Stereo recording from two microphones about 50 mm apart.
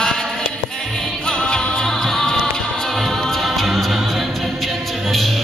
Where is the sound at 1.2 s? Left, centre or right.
Centre.